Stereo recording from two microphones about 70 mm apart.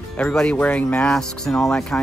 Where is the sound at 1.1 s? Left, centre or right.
Centre.